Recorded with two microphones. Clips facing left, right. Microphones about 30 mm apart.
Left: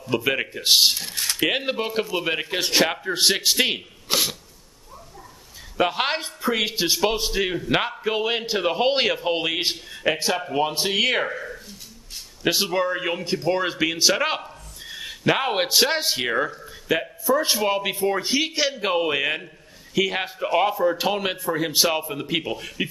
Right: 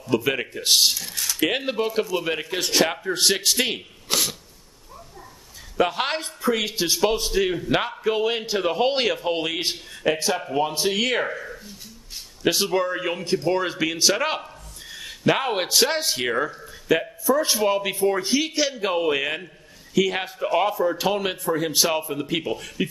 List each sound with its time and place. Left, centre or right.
0.1 s a man's voice: centre
0.9 s a sound: left
1.4 s a man's voice: centre
5.8 s a man's voice: centre
12.4 s a man's voice: centre